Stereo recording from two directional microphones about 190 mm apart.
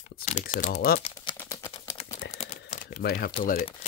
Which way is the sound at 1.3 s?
15° left (ahead or behind).